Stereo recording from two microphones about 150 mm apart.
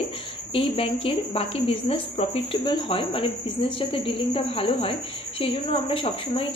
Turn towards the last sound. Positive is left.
turn(degrees=35)  # may be behind; listen again after turning